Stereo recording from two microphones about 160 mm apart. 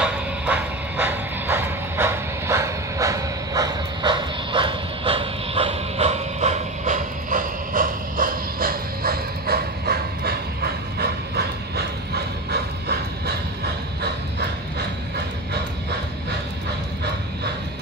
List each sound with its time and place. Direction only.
0.0 s vehicle: 10° right (ahead or behind); by 10.3 s 75° right (ahead or behind)
11.0 s train: 90° right